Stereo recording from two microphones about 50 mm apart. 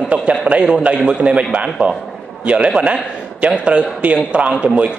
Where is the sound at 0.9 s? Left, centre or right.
Centre.